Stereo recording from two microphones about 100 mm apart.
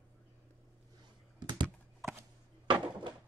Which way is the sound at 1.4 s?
50° right (ahead or behind).